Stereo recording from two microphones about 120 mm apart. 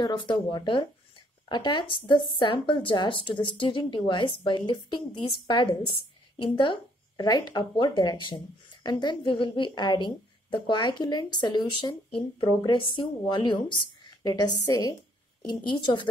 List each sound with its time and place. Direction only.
0.0 s speech: 40° left (ahead or behind)